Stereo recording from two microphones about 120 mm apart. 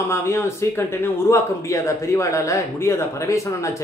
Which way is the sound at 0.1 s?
25° left (ahead or behind).